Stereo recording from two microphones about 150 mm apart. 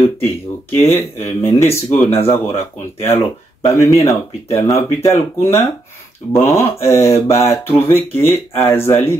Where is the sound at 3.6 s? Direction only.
20° left (ahead or behind).